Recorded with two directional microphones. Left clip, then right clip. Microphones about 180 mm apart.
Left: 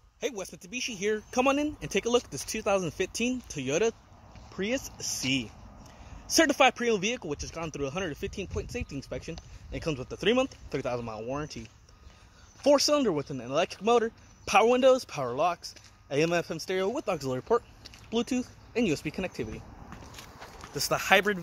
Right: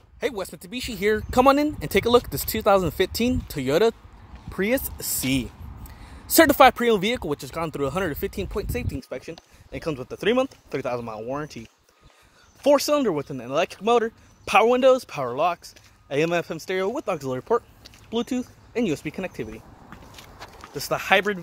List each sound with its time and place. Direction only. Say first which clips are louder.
0.2 s speech: right 6 dB; 20° right (ahead or behind)
1.0 s speech: right 9 dB; 40° right (ahead or behind)
12.6 s speech: right 4 dB; 30° right (ahead or behind)
13.6 s speech: right 4 dB; 20° right (ahead or behind)
14.0 s speech: right 4 dB; 35° right (ahead or behind)
18.7 s speech: right 3 dB; 15° right (ahead or behind)
20.7 s speech: right 3 dB; 5° right (ahead or behind)